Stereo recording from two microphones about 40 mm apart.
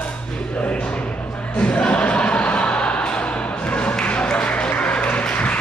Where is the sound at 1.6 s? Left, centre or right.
Left.